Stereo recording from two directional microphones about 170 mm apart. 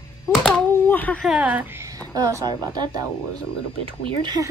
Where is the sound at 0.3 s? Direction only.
Centre (ahead or behind).